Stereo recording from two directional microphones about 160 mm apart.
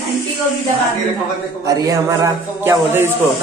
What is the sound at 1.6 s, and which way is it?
A man's voice, 20° right (ahead or behind).